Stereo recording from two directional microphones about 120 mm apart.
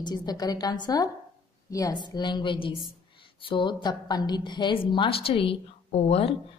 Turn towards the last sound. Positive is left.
turn(degrees=55)  # may be behind; listen again after turning